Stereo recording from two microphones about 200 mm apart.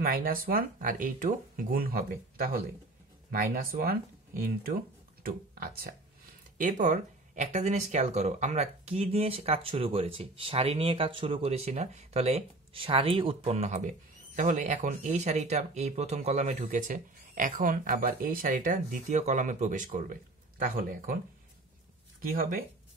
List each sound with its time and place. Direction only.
0.0 s speech: 45° right (ahead or behind)
22.4 s speech: 45° right (ahead or behind)